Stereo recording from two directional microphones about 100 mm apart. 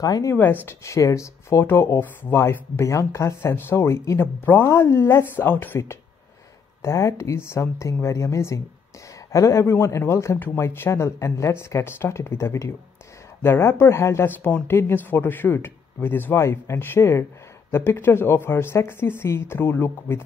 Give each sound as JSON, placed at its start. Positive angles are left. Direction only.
{"t": 0.0, "sound": "speech", "side_deg": 35}